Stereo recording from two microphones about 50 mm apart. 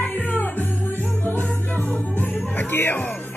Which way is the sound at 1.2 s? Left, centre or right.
Left.